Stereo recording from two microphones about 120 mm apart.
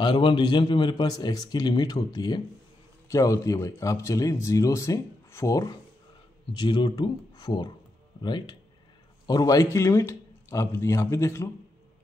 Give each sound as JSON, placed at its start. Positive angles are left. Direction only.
{"t": 0.0, "sound": "a man's voice", "side_deg": 40}